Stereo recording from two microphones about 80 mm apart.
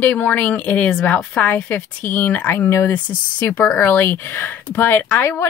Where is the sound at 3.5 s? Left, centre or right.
Centre.